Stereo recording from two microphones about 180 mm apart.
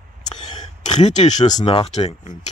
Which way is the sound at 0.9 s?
40° left (ahead or behind).